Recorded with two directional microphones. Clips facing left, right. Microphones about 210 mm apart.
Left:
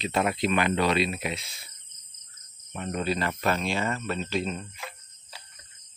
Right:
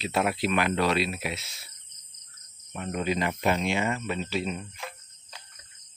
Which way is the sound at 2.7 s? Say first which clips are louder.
Even; 5° right (ahead or behind).